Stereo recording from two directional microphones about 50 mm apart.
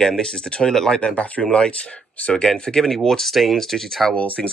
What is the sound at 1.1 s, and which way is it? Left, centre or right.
Speech, left.